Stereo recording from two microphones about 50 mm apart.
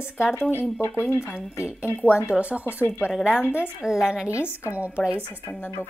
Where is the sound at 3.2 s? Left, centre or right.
Centre.